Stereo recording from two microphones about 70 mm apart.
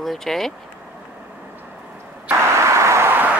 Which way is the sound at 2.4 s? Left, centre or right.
Right.